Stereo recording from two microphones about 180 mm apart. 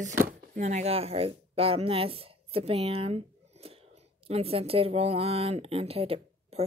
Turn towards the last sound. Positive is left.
turn(degrees=-35)  # may be behind; listen again after turning